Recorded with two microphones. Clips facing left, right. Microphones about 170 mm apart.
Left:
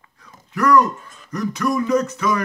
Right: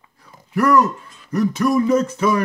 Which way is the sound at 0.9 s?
45° left (ahead or behind).